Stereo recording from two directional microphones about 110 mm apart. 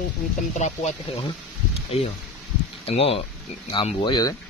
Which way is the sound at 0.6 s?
90° left.